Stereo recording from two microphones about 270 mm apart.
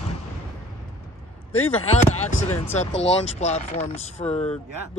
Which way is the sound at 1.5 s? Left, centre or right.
Left.